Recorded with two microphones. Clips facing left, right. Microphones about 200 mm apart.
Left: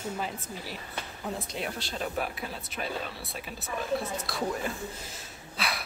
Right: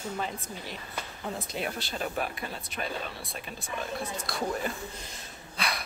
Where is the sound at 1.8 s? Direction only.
Centre (ahead or behind).